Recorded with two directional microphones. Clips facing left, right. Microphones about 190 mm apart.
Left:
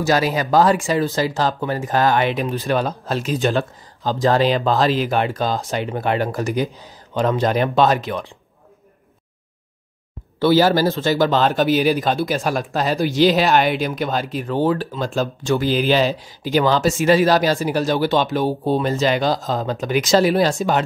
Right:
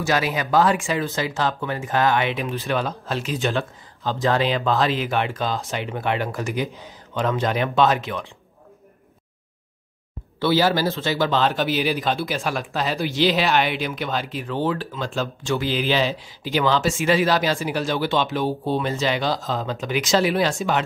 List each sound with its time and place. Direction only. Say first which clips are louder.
0.0 s speech: left 4 dB; 40° left (ahead or behind)
10.4 s speech: left 5 dB; 45° left (ahead or behind)